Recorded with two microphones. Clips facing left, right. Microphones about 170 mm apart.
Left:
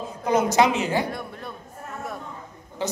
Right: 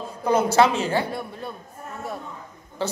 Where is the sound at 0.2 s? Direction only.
15° left (ahead or behind).